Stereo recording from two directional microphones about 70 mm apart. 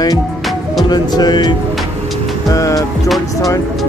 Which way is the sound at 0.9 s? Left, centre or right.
Left.